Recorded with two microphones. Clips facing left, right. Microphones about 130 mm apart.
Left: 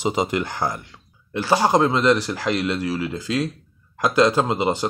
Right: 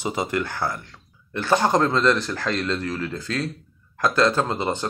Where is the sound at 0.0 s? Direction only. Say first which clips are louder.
Left 3 dB; 15° left (ahead or behind).